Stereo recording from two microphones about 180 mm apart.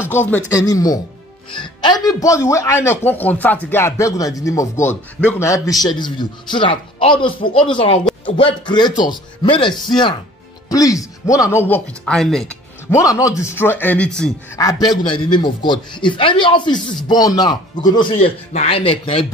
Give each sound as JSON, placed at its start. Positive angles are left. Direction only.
{"t": 0.1, "sound": "a man's voice", "side_deg": 10}
{"t": 12.9, "sound": "speech", "side_deg": 15}
{"t": 14.6, "sound": "a man's voice", "side_deg": 20}
{"t": 18.1, "sound": "speech", "side_deg": 45}